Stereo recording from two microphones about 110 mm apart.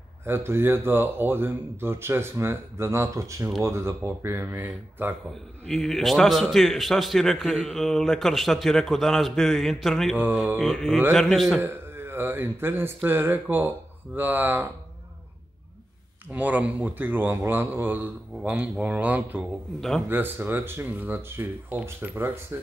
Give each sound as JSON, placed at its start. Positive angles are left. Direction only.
{"t": 0.2, "sound": "speech", "side_deg": -20}
{"t": 5.7, "sound": "a man's voice", "side_deg": 10}
{"t": 10.1, "sound": "a man's voice", "side_deg": -15}
{"t": 10.6, "sound": "a man's voice", "side_deg": 0}
{"t": 11.6, "sound": "speech", "side_deg": -20}
{"t": 16.3, "sound": "a man's voice", "side_deg": -15}